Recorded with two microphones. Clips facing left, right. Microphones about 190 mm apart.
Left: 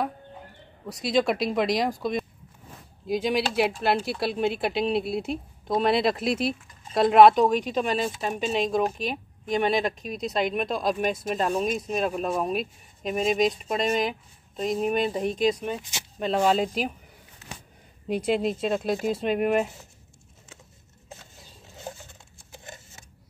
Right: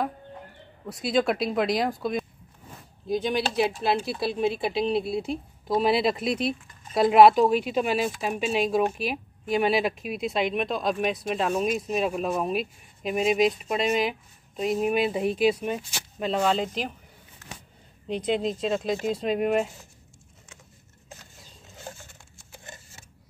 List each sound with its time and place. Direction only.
0.8 s speech: 5° right (ahead or behind)
16.2 s speech: 5° left (ahead or behind)
18.0 s speech: 10° left (ahead or behind)
21.7 s patter: 20° left (ahead or behind)
22.5 s a sound: 20° left (ahead or behind)